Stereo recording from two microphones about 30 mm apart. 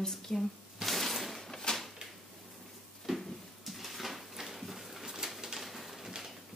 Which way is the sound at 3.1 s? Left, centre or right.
Centre.